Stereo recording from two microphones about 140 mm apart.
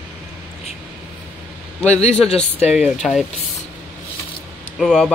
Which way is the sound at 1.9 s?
55° left (ahead or behind).